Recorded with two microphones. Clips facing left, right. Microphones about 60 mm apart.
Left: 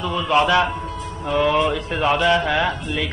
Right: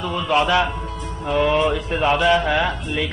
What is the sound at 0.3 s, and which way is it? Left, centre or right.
Speech, centre.